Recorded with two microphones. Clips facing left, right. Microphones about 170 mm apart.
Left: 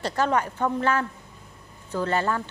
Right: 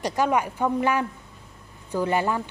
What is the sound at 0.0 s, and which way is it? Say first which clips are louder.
A woman's voice: right 1 dB; 10° right (ahead or behind).